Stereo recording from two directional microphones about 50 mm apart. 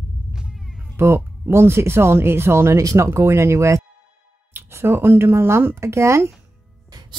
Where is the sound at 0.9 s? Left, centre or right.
Right.